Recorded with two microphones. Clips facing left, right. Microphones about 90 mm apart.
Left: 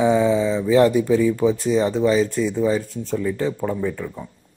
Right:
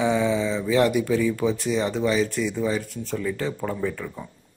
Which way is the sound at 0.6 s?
30° left (ahead or behind).